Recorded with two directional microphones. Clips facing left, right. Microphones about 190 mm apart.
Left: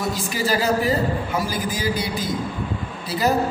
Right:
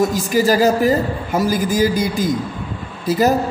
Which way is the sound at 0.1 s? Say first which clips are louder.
Right 7 dB; 45° right (ahead or behind).